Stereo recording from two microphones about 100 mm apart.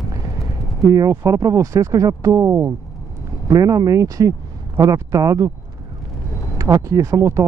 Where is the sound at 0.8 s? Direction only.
35° right (ahead or behind).